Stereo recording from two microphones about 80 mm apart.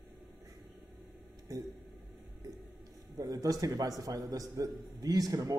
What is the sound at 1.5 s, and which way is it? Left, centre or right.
Speech, right.